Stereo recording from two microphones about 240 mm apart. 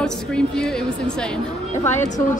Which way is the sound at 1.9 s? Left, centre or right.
Left.